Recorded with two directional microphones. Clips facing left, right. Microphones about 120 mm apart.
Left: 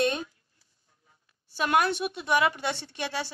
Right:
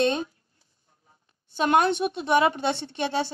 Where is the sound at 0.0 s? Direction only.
25° right (ahead or behind).